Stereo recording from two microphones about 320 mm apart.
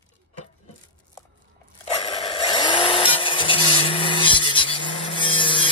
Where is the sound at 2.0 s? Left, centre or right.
Centre.